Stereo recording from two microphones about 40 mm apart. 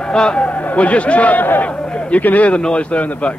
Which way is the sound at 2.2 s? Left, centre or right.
Left.